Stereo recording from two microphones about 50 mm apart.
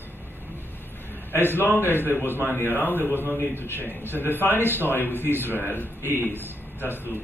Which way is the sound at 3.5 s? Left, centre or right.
Left.